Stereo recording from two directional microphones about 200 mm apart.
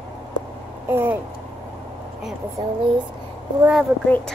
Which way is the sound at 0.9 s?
10° right (ahead or behind).